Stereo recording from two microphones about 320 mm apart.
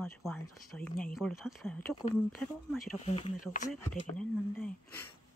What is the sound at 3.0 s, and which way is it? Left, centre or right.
Speech, centre.